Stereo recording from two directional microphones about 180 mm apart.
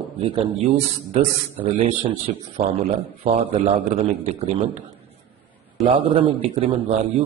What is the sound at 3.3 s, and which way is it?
Speech, 45° right (ahead or behind).